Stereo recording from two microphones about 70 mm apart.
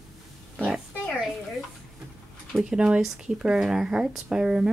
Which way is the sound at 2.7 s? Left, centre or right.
Centre.